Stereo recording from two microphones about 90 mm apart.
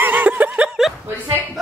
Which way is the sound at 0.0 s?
20° right (ahead or behind).